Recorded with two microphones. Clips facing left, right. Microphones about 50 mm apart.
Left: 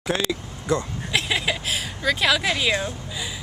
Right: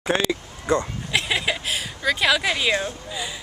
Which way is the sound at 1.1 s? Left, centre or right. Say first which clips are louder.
Even; centre.